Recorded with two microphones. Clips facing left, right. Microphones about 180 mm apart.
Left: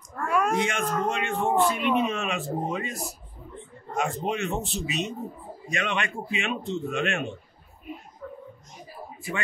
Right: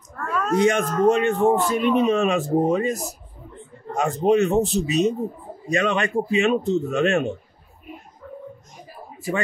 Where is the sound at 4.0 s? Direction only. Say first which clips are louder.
Right 9 dB; 40° right (ahead or behind).